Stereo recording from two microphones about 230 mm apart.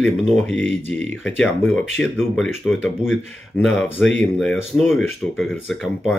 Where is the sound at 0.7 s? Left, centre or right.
Right.